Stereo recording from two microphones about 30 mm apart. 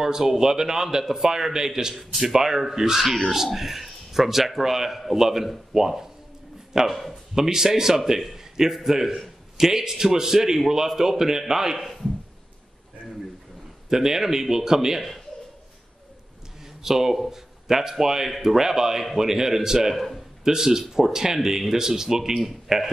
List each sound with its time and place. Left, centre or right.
0.0 s a man's voice: centre
6.9 s a man's voice: centre
7.3 s a man's voice: centre
13.8 s a man's voice: centre
16.8 s a man's voice: centre
19.9 s a man's voice: centre
20.4 s a man's voice: centre
22.4 s a man's voice: centre